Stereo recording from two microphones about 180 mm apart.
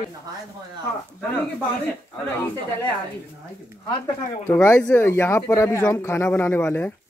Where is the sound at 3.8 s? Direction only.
25° left (ahead or behind).